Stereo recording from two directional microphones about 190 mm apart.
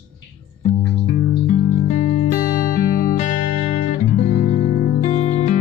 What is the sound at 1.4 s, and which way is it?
Music, 40° left (ahead or behind).